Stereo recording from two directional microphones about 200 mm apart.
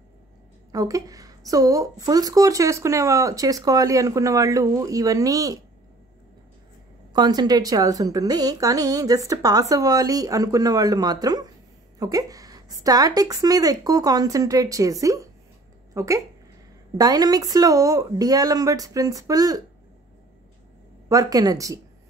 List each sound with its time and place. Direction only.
0.7 s a woman's voice: 15° right (ahead or behind)
7.1 s a woman's voice: 20° right (ahead or behind)
21.1 s a woman's voice: 20° right (ahead or behind)